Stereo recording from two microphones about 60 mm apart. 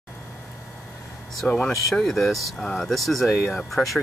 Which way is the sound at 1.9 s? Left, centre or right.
Centre.